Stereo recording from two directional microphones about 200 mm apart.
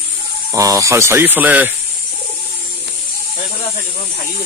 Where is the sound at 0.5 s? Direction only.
15° right (ahead or behind).